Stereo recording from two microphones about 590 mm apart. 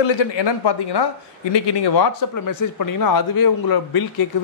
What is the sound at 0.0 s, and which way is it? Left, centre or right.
A man's voice, left.